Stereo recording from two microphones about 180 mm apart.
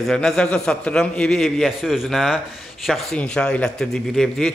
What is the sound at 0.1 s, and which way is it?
A man's voice, 5° left (ahead or behind).